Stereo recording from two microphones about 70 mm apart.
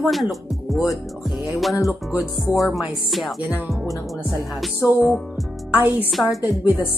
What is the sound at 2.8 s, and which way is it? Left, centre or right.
Speech, centre.